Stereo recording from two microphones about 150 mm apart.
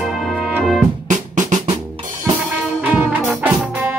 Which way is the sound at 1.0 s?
55° right (ahead or behind).